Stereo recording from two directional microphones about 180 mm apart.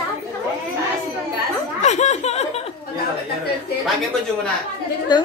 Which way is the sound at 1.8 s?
40° left (ahead or behind).